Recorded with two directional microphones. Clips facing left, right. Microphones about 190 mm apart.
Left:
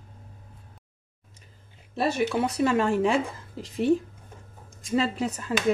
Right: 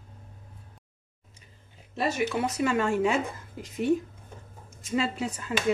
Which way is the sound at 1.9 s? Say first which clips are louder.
Left 3 dB; 35° left (ahead or behind).